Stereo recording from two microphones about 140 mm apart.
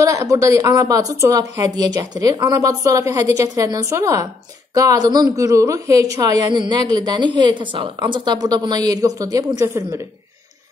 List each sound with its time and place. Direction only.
0.0 s a woman's voice: 20° right (ahead or behind)